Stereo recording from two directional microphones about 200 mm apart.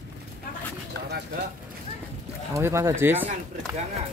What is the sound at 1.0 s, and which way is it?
Speech, 55° right (ahead or behind).